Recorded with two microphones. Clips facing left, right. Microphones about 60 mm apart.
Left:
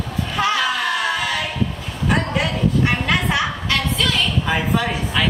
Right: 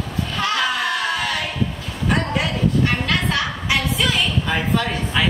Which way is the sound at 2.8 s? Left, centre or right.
Centre.